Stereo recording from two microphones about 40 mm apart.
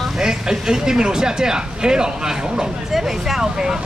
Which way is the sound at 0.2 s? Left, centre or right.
Centre.